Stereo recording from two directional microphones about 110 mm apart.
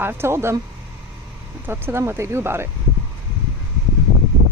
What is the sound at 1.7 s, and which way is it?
Speech, 20° right (ahead or behind).